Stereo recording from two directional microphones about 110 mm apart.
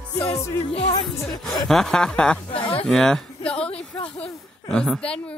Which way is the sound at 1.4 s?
Centre (ahead or behind).